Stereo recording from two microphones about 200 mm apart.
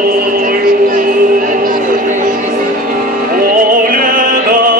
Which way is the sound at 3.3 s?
45° right (ahead or behind).